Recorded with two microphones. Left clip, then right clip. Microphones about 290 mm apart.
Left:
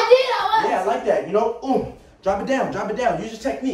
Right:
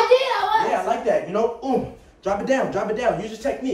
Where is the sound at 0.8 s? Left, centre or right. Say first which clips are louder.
Left 1 dB; centre.